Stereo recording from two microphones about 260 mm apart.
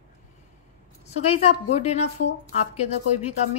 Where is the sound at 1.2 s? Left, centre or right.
Left.